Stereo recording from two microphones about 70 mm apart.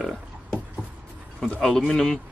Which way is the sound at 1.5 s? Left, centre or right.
Centre.